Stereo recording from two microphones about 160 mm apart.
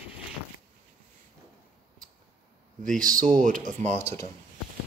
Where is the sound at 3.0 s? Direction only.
55° right (ahead or behind).